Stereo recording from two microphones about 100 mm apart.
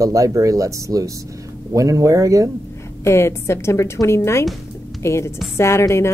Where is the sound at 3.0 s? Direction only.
25° left (ahead or behind).